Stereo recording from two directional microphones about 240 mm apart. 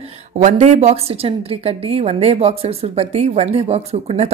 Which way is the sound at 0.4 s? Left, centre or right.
Right.